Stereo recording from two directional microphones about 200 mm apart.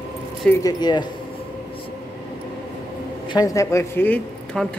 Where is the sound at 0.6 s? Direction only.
20° left (ahead or behind).